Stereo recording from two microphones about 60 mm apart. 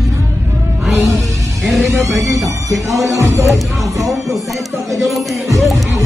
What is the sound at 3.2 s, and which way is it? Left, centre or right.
Music, right.